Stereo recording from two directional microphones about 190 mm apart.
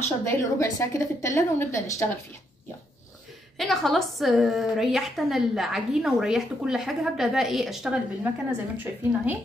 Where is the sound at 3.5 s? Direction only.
Centre (ahead or behind).